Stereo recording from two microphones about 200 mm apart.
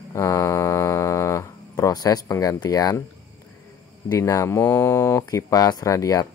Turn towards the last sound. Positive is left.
turn(degrees=15)  # may be behind; listen again after turning